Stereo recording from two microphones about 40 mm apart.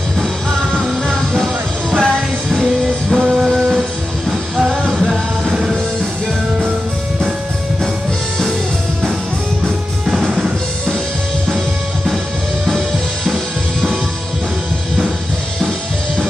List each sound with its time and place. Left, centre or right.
1.4 s music: centre
3.2 s music: centre
5.5 s music: centre
10.0 s music: centre
12.6 s music: centre